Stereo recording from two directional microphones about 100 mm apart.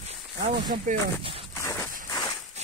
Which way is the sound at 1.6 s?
25° left (ahead or behind).